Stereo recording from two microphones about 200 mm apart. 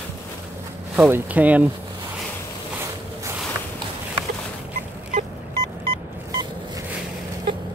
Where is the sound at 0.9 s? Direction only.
10° right (ahead or behind).